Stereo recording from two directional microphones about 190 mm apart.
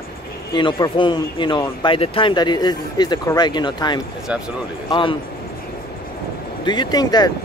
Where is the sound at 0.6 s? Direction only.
25° left (ahead or behind).